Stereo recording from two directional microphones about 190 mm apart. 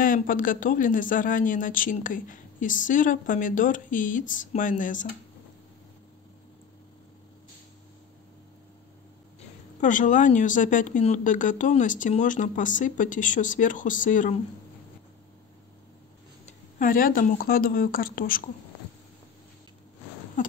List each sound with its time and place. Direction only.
0.0 s a man's voice: 45° left (ahead or behind)
9.8 s a man's voice: 40° left (ahead or behind)
16.4 s a man's voice: 45° left (ahead or behind)